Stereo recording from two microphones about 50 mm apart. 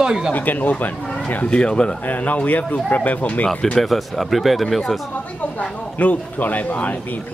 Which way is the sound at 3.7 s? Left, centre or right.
Centre.